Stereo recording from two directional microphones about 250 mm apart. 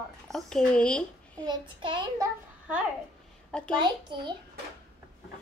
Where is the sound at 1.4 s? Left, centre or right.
Centre.